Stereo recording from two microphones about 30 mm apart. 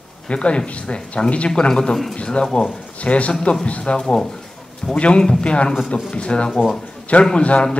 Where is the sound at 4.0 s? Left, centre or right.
Left.